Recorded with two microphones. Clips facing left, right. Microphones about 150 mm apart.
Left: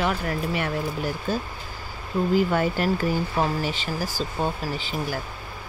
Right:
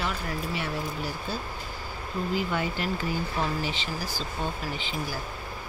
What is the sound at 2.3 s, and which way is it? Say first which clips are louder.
Speech: left 7 dB; 45° left (ahead or behind).